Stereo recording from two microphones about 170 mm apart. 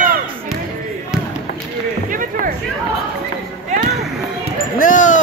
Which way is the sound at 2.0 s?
50° right (ahead or behind).